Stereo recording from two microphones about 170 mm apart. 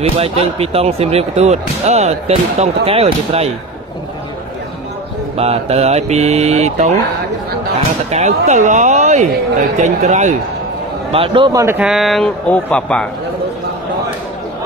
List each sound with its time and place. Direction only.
0.2 s speech: 35° right (ahead or behind)
5.4 s speech: 35° right (ahead or behind)
8.1 s speech: 40° right (ahead or behind)
11.1 s a man's voice: 30° right (ahead or behind)
11.6 s speech: 10° right (ahead or behind)